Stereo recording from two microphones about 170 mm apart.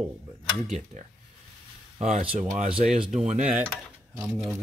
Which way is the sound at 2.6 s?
30° right (ahead or behind).